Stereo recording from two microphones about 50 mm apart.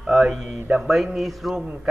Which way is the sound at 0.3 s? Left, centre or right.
Centre.